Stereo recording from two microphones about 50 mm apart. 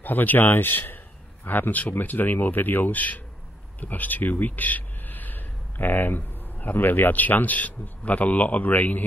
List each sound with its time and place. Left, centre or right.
0.0 s speech: left